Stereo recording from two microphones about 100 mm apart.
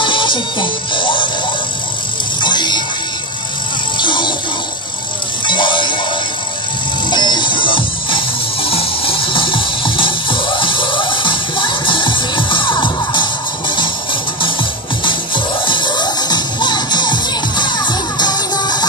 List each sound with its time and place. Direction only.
0.0 s music: 55° left (ahead or behind)
2.4 s music: 50° left (ahead or behind)
4.0 s music: 55° left (ahead or behind)
5.5 s music: 55° left (ahead or behind)
7.1 s music: 50° left (ahead or behind)